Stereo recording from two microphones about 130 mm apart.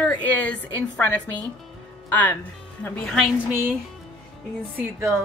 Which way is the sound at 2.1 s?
15° left (ahead or behind).